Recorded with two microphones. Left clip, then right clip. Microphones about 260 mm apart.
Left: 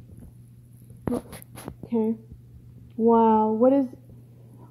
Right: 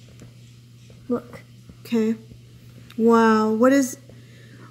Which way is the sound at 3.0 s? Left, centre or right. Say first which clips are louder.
Right 2 dB; right.